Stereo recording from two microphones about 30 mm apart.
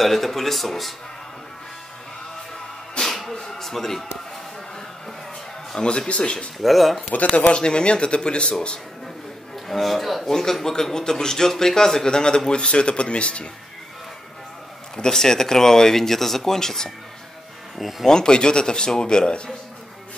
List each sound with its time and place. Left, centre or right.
0.0 s speech: centre
3.0 s music: centre
3.5 s a man's voice: centre
5.8 s speech: left
6.6 s speech: centre
7.1 s speech: left
7.5 s speech: left
9.7 s speech: centre
10.3 s speech: centre; by 13.5 s left
15.0 s speech: centre
17.7 s speech: centre
18.0 s speech: left